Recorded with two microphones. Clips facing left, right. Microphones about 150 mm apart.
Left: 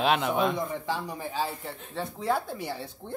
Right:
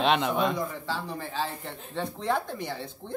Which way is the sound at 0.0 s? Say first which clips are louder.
Even; centre (ahead or behind).